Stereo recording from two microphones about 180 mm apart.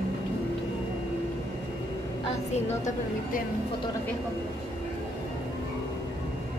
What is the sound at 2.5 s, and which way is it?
Speech, 40° left (ahead or behind).